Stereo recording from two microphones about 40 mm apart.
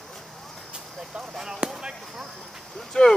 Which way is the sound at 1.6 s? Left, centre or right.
Right.